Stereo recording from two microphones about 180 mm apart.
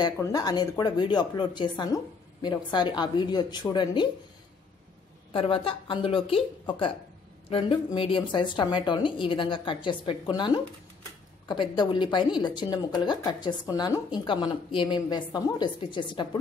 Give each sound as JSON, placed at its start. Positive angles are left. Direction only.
{"t": 0.0, "sound": "a woman's voice", "side_deg": 20}
{"t": 5.3, "sound": "a woman's voice", "side_deg": 30}